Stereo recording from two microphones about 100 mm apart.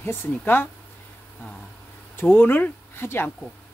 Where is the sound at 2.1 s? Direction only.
20° left (ahead or behind).